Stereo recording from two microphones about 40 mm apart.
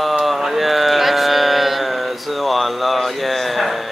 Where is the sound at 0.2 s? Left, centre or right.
Centre.